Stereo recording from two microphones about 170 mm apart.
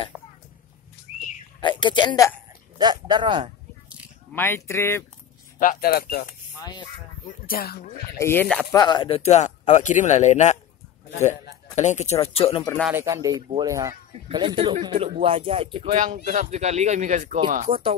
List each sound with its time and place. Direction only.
0.1 s a sound: 10° right (ahead or behind)
1.6 s speech: 25° left (ahead or behind)
2.8 s speech: 25° right (ahead or behind)
4.3 s speech: 15° left (ahead or behind)
5.6 s speech: 55° left (ahead or behind)
6.6 s speech: 25° left (ahead or behind)
7.2 s speech: 60° left (ahead or behind)
8.2 s speech: 15° left (ahead or behind)
8.7 s speech: 25° left (ahead or behind); by 10.6 s 45° left (ahead or behind)
11.7 s speech: 40° left (ahead or behind)
12.9 s speech: 20° right (ahead or behind)
14.4 s speech: 30° right (ahead or behind); by 17.4 s 45° right (ahead or behind)
17.6 s speech: 35° right (ahead or behind)